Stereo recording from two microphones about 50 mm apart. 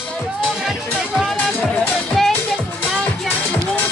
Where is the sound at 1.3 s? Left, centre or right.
Left.